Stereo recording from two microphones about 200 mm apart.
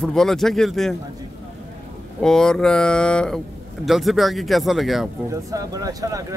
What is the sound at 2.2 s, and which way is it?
Speech, 5° left (ahead or behind).